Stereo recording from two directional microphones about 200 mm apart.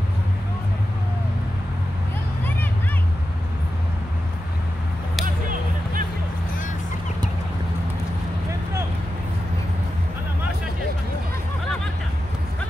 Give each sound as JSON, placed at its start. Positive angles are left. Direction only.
{"t": 5.2, "sound": "music", "side_deg": -45}